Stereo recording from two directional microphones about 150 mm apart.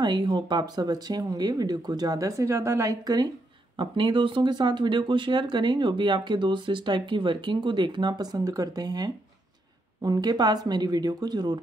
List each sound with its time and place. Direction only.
0.0 s speech: 30° right (ahead or behind)